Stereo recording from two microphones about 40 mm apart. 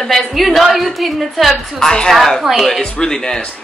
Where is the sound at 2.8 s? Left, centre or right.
Left.